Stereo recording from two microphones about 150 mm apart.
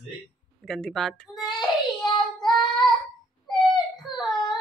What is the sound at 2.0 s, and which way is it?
Child singing, 30° left (ahead or behind).